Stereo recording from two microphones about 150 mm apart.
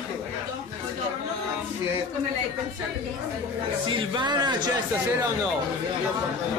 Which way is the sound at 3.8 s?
30° right (ahead or behind).